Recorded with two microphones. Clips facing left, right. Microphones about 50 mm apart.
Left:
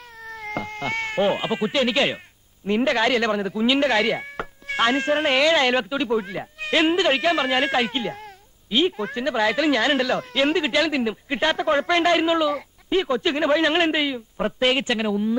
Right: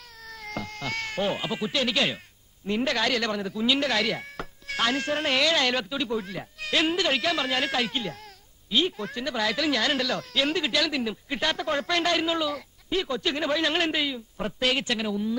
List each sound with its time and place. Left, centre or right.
0.2 s speech: left